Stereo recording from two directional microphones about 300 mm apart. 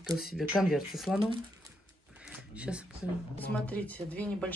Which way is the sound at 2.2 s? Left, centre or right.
Centre.